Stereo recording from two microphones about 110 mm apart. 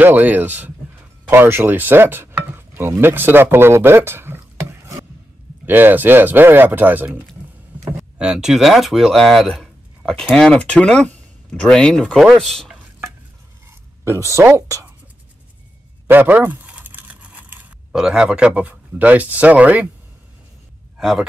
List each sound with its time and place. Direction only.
0.0 s speech: 15° right (ahead or behind)
1.3 s stir: 20° right (ahead or behind)
5.7 s speech: 20° right (ahead or behind)
8.2 s speech: 5° right (ahead or behind)
14.0 s speech: 25° right (ahead or behind)
16.1 s a sound: 20° right (ahead or behind)
17.9 s speech: 5° right (ahead or behind)
21.0 s speech: 5° right (ahead or behind)